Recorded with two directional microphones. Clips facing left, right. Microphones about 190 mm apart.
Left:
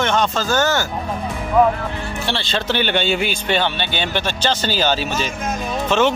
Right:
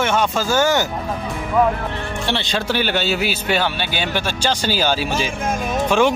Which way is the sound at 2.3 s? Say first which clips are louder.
Right 1 dB; 15° right (ahead or behind).